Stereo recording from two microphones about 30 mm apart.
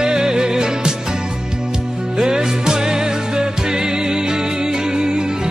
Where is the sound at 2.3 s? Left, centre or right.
Right.